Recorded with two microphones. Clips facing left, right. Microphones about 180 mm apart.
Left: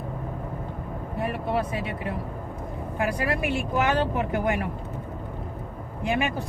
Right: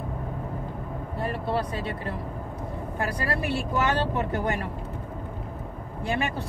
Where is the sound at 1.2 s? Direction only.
10° left (ahead or behind).